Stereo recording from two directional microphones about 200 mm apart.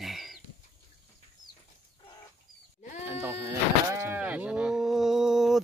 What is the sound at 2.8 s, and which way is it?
Sheep, 40° left (ahead or behind).